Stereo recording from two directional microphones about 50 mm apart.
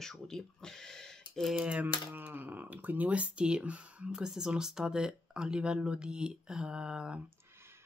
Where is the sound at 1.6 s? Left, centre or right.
Right.